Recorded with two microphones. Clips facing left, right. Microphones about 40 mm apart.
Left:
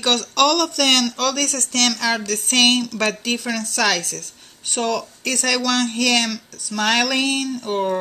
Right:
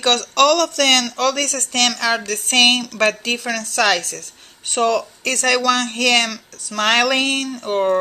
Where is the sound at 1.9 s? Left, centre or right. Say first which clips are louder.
Right 2 dB; centre.